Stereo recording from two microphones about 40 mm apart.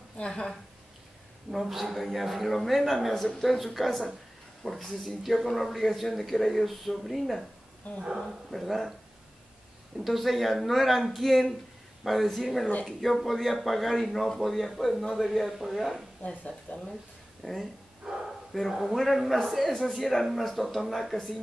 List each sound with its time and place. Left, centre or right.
1.5 s speech: centre
7.8 s speech: left
8.5 s speech: centre
9.9 s a man's voice: centre
16.2 s speech: left
17.4 s speech: centre